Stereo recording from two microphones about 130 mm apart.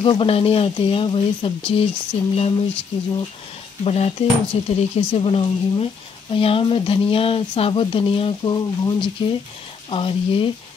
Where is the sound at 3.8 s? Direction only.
55° left (ahead or behind).